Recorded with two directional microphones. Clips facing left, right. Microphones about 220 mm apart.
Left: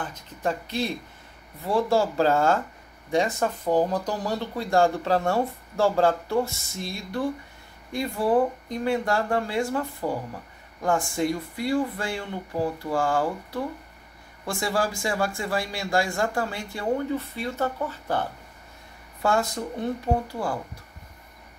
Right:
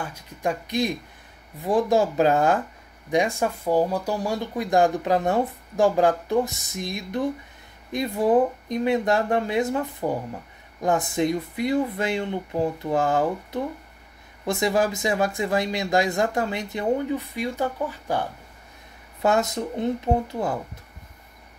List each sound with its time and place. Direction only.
0.0 s speech: 10° right (ahead or behind)